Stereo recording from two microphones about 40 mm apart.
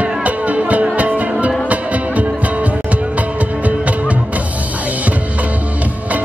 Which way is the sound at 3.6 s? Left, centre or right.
Right.